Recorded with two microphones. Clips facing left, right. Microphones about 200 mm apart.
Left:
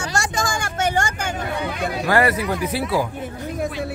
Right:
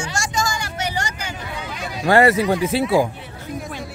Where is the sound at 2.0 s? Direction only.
25° right (ahead or behind).